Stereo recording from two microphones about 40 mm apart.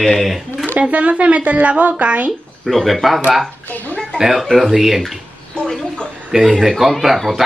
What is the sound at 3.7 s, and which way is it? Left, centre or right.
Speech, left.